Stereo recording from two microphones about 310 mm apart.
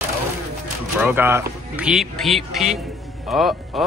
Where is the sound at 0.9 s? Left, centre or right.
Centre.